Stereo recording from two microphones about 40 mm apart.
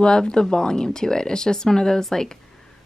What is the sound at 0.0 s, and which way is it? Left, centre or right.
Speech, left.